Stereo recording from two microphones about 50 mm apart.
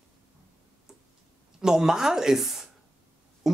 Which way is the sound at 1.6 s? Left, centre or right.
Centre.